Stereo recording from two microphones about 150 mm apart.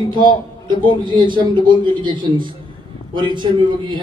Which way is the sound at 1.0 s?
30° right (ahead or behind).